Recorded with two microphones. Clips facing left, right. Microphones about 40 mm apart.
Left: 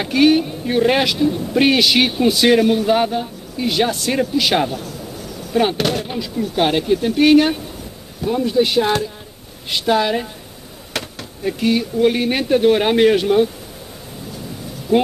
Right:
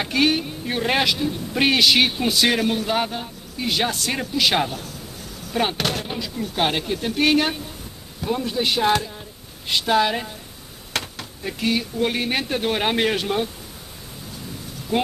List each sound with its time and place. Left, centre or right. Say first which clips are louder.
0.0 s speech: left 6 dB; centre
14.9 s speech: left 7 dB; centre